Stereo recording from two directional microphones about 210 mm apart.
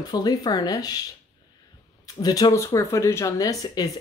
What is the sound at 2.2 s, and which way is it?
Speech, 20° left (ahead or behind).